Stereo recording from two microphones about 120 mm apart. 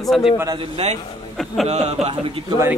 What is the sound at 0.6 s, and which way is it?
Speech, 55° right (ahead or behind).